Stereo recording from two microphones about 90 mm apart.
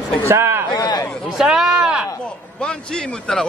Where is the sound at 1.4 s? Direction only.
5° right (ahead or behind).